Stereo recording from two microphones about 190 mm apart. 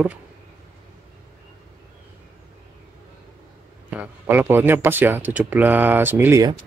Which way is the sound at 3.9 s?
10° right (ahead or behind).